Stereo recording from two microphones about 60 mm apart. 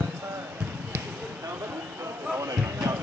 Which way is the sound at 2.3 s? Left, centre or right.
Right.